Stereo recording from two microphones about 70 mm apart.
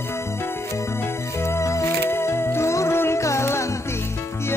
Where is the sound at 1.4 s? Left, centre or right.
Left.